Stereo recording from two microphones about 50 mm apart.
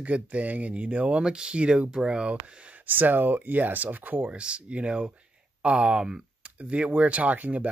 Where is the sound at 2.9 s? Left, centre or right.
Right.